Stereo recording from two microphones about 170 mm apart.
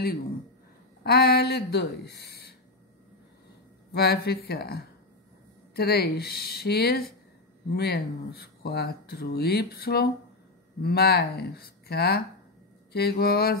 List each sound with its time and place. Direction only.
1.0 s speech: 70° left (ahead or behind)
3.9 s speech: 70° left (ahead or behind)